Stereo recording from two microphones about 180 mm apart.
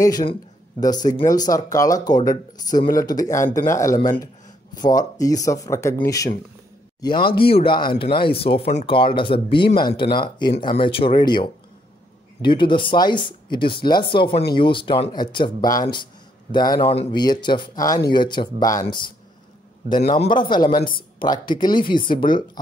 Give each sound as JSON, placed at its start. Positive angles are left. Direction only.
{"t": 0.2, "sound": "speech", "side_deg": 25}
{"t": 20.0, "sound": "speech", "side_deg": 35}
{"t": 20.7, "sound": "speech", "side_deg": 50}
{"t": 21.2, "sound": "speech", "side_deg": 25}
{"t": 21.8, "sound": "speech", "side_deg": 50}
{"t": 22.1, "sound": "speech", "side_deg": 25}